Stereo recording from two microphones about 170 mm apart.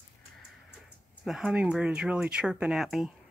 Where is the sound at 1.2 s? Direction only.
5° right (ahead or behind).